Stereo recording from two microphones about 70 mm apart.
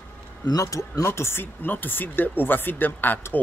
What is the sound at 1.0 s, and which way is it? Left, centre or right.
Speech, left.